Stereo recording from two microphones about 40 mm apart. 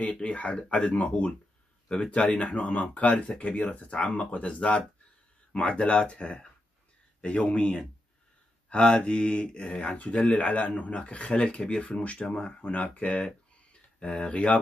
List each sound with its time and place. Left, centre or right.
0.1 s speech: left
1.9 s speech: left
2.2 s speech: left
10.3 s speech: left